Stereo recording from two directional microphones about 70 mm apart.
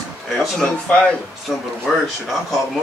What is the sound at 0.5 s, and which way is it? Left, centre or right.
Speech, centre.